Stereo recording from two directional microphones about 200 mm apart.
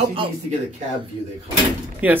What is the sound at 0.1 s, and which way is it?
Speech, 25° right (ahead or behind).